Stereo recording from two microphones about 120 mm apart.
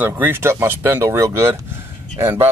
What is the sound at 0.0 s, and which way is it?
Speech, 15° right (ahead or behind).